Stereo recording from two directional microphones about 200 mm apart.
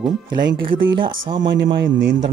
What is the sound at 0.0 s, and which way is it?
Speech, 25° right (ahead or behind).